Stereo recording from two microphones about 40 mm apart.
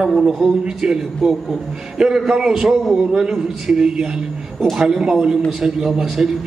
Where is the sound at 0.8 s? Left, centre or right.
Centre.